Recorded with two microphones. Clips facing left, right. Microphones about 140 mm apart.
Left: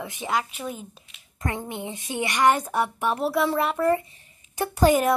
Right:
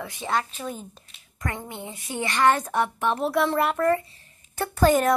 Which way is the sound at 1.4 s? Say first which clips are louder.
Left 3 dB; 20° left (ahead or behind).